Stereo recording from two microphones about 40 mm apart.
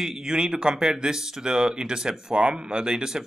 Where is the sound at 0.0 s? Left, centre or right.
Centre.